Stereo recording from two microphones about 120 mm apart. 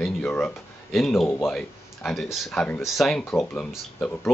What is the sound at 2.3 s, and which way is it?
Speech, 5° left (ahead or behind).